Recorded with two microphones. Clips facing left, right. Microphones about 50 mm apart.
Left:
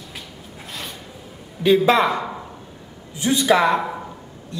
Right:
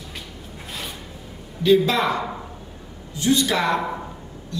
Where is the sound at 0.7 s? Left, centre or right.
Centre.